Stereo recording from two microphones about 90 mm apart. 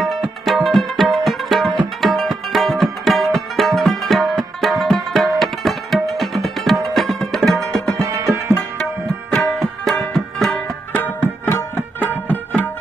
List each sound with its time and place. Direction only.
0.0 s music: centre (ahead or behind)
2.0 s tabla: centre (ahead or behind)
6.1 s music: centre (ahead or behind)
8.1 s music: 35° right (ahead or behind)
9.3 s tabla: 10° left (ahead or behind)
9.6 s music: 5° left (ahead or behind)
10.9 s music: 20° left (ahead or behind)